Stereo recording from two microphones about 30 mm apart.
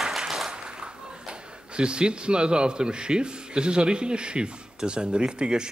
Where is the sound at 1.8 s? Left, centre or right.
Right.